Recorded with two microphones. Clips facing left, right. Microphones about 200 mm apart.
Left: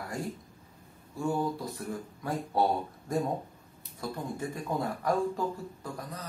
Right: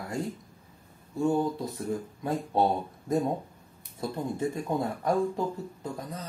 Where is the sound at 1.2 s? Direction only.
20° right (ahead or behind).